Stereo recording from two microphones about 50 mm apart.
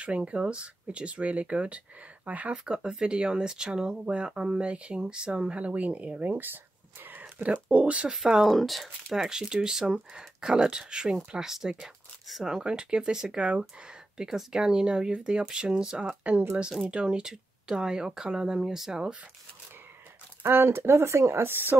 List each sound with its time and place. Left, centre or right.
0.0 s speech: right
2.6 s speech: centre
6.3 s a sound: right
7.7 s speech: right
8.1 s speech: centre
16.1 s speech: right
20.4 s speech: right